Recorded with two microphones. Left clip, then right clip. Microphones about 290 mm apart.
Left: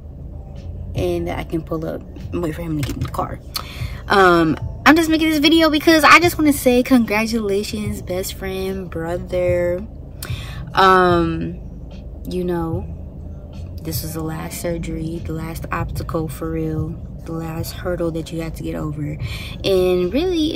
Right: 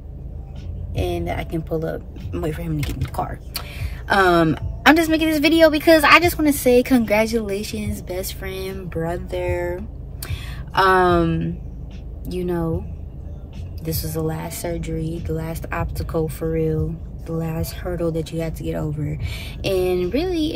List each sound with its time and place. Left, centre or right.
0.9 s a woman's voice: centre
13.8 s speech: centre